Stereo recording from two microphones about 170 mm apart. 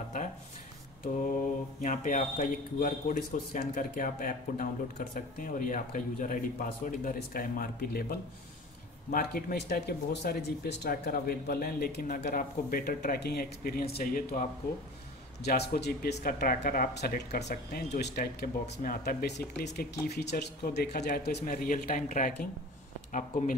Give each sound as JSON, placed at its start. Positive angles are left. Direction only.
{"t": 1.8, "sound": "speech", "side_deg": 50}
{"t": 15.4, "sound": "speech", "side_deg": 75}
{"t": 16.9, "sound": "speech", "side_deg": 75}
{"t": 17.7, "sound": "speech", "side_deg": 60}
{"t": 19.2, "sound": "speech", "side_deg": 85}
{"t": 21.6, "sound": "speech", "side_deg": 55}